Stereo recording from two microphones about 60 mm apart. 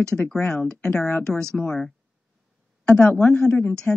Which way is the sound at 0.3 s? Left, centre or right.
Centre.